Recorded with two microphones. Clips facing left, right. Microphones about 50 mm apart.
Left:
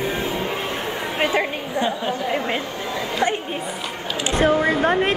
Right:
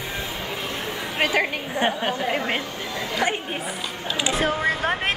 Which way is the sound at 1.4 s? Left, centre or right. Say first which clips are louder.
Left 1 dB; right.